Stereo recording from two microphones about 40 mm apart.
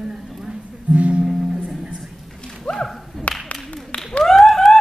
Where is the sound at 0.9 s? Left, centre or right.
Right.